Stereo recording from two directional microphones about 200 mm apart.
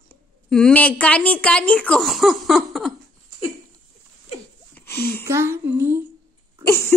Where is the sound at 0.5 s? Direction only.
5° left (ahead or behind).